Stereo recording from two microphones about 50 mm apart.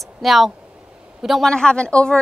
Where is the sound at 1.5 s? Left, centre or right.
Centre.